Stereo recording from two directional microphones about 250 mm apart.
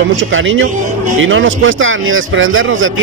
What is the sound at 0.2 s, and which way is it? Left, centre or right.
A man's voice, right.